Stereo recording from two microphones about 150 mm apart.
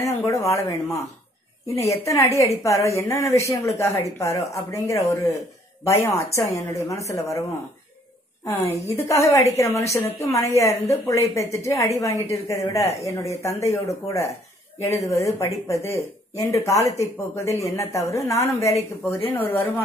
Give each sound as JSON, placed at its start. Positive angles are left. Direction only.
{"t": 0.0, "sound": "speech", "side_deg": 20}
{"t": 8.5, "sound": "speech", "side_deg": 20}